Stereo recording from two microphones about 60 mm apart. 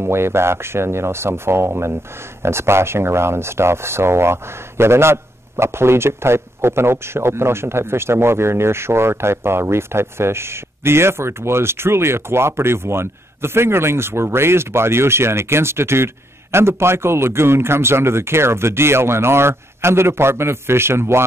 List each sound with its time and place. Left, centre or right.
0.0 s speech: right